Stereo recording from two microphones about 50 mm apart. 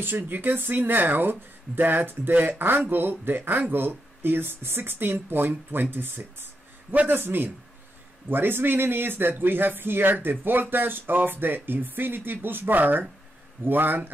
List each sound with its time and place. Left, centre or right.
0.0 s a man's voice: right